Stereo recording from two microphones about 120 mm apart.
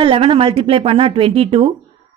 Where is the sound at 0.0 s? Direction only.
50° right (ahead or behind).